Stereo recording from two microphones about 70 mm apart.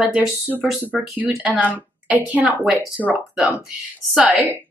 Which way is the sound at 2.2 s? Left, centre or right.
Right.